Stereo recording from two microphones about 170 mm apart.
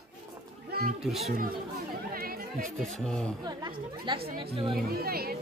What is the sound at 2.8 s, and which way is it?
Speech, centre (ahead or behind).